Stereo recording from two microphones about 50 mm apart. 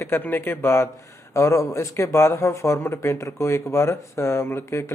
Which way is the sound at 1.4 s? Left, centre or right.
Left.